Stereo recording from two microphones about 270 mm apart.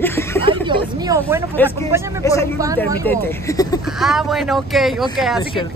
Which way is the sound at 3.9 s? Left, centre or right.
Centre.